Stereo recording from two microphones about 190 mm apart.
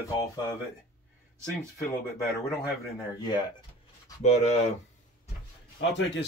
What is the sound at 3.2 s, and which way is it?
Speech, 20° left (ahead or behind).